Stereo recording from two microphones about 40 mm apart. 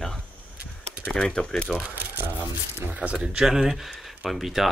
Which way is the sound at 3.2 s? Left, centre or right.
Right.